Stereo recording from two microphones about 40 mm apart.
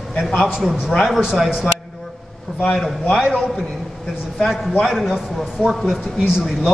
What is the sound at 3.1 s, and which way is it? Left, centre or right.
Speech, centre.